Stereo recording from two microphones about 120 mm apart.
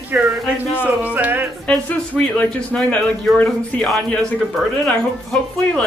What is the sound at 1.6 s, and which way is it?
Speech, 10° left (ahead or behind).